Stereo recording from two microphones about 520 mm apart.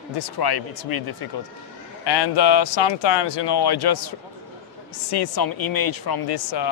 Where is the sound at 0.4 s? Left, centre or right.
Left.